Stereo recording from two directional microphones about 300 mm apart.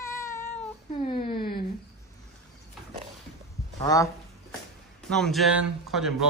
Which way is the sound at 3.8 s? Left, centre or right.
Centre.